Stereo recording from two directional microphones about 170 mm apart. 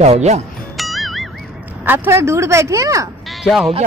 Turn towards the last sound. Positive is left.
turn(degrees=0)  # may be behind; listen again after turning